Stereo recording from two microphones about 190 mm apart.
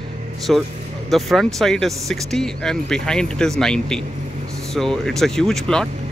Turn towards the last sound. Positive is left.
turn(degrees=0)  # may be behind; listen again after turning